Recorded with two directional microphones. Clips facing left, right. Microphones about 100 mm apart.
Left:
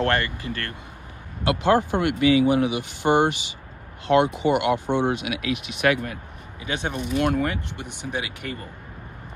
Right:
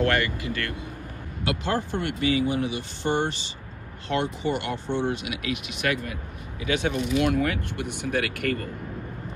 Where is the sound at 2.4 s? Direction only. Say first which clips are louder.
Left 6 dB; 55° left (ahead or behind).